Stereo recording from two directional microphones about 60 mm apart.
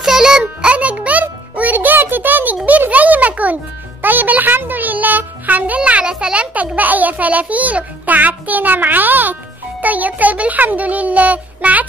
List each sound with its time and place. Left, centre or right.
0.0 s music: centre; by 2.8 s right
2.9 s a sound: right
4.0 s music: right
5.8 s a child's voice: centre